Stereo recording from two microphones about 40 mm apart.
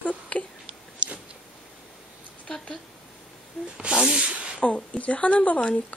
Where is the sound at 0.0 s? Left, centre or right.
Left.